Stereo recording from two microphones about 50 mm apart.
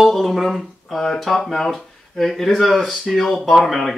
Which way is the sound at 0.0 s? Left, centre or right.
Centre.